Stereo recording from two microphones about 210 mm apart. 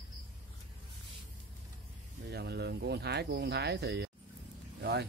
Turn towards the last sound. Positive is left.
turn(degrees=-50)  # may be behind; listen again after turning